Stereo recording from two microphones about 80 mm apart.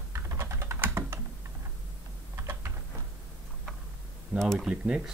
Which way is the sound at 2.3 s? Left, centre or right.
Right.